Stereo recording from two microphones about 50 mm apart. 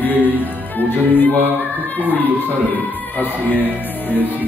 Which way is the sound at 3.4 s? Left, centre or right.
Left.